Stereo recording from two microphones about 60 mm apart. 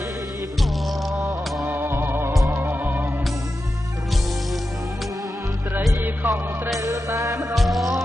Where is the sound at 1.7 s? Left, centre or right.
Right.